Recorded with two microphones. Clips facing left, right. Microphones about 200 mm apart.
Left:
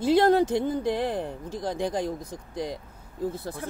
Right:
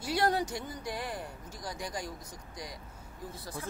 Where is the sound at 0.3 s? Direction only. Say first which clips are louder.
Left 12 dB; 55° left (ahead or behind).